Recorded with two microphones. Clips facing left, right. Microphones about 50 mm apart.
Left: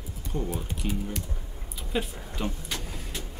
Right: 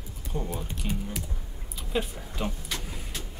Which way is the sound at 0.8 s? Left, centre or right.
Centre.